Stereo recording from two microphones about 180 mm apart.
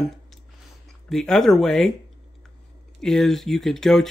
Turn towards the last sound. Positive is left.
turn(degrees=0)  # may be behind; listen again after turning